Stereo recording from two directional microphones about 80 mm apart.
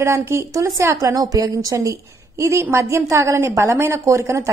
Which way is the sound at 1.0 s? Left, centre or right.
Right.